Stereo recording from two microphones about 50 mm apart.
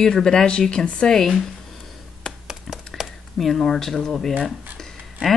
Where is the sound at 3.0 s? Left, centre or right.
Centre.